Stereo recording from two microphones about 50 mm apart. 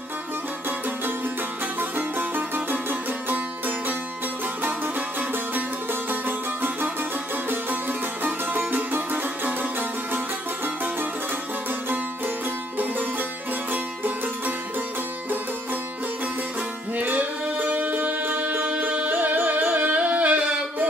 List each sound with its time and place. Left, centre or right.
1.8 s music: right
6.0 s music: right
8.2 s music: right
13.7 s music: right
16.9 s music: right